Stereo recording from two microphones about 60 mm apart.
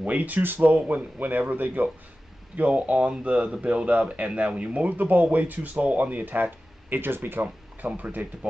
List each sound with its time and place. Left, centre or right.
0.0 s speech: right